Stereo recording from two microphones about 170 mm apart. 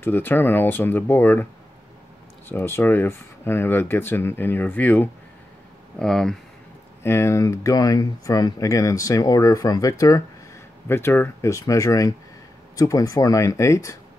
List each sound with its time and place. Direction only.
0.0 s speech: 10° left (ahead or behind)
7.0 s speech: 15° left (ahead or behind)